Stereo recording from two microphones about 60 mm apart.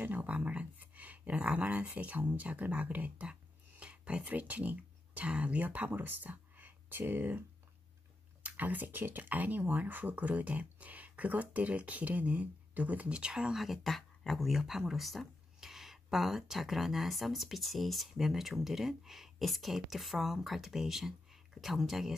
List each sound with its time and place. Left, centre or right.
0.0 s speech: right
13.6 s speech: centre